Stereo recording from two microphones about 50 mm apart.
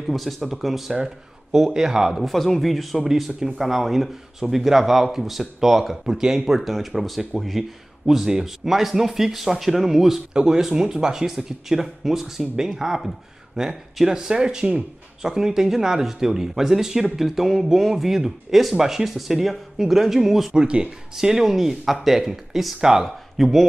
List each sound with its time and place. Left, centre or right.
0.0 s speech: centre
2.1 s speech: centre
20.5 s speech: right
21.2 s speech: centre